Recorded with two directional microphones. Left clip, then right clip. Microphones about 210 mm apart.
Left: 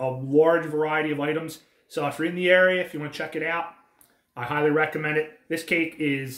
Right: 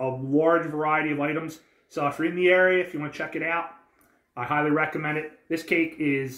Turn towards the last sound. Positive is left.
turn(degrees=15)  # may be behind; listen again after turning